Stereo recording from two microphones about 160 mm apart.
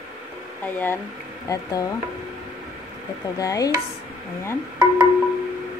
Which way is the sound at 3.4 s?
20° left (ahead or behind).